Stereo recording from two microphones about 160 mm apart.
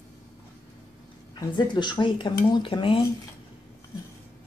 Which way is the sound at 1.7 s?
25° left (ahead or behind).